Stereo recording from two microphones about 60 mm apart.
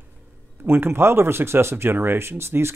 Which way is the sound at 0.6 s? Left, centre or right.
Right.